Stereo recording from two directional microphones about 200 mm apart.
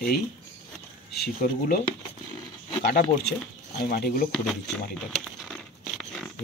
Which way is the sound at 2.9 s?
50° left (ahead or behind).